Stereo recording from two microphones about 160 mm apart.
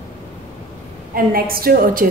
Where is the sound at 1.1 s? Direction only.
65° right (ahead or behind).